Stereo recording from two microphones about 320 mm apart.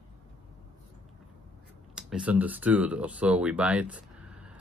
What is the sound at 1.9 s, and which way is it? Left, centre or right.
Speech, centre.